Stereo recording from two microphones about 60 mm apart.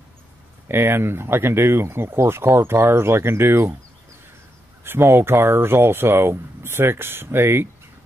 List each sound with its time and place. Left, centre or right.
0.7 s speech: right
4.8 s speech: right